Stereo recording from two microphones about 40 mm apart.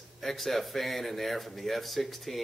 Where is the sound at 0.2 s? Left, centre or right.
Centre.